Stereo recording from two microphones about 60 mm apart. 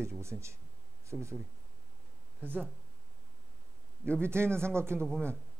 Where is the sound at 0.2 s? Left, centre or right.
Right.